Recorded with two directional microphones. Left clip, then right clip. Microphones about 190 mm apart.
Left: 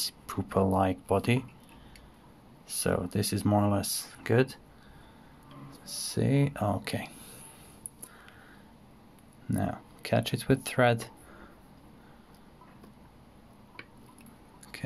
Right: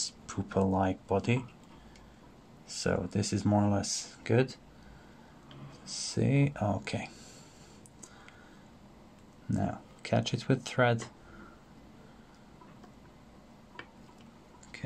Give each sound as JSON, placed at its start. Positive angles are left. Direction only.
{"t": 0.0, "sound": "speech", "side_deg": 15}
{"t": 2.7, "sound": "speech", "side_deg": 10}
{"t": 5.7, "sound": "speech", "side_deg": 10}
{"t": 9.5, "sound": "speech", "side_deg": 10}